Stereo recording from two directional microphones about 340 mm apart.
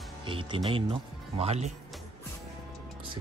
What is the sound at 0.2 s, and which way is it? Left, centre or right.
Speech, centre.